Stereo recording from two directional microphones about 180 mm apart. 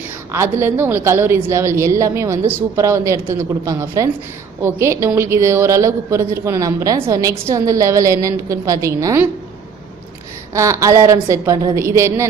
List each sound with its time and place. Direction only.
0.3 s a woman's voice: 15° right (ahead or behind)
10.5 s a woman's voice: 15° right (ahead or behind)